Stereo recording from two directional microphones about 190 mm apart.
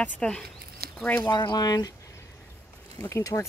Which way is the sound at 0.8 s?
55° right (ahead or behind).